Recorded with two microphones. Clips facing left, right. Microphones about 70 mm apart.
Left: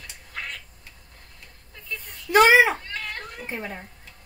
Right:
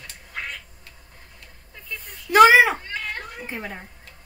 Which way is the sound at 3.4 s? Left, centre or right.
Centre.